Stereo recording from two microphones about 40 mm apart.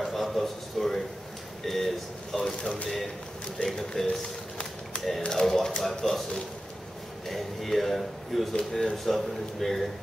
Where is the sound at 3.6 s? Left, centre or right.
Centre.